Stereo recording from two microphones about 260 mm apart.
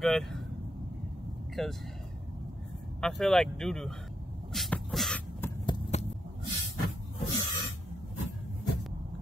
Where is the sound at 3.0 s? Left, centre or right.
Centre.